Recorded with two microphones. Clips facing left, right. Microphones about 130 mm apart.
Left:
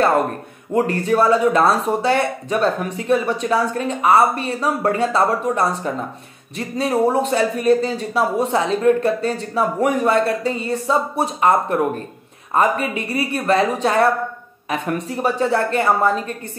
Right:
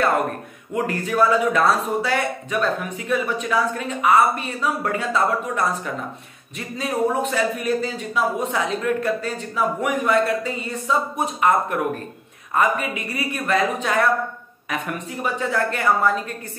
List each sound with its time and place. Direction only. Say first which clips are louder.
0.7 s speech: left 4 dB; 30° left (ahead or behind)
6.8 s speech: left 4 dB; 30° left (ahead or behind)
15.2 s speech: left 4 dB; 30° left (ahead or behind)